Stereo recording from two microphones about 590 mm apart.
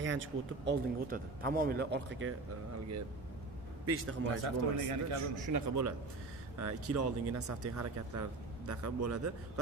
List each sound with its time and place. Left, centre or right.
0.0 s speech: centre
3.8 s speech: right
4.5 s speech: right
5.5 s speech: right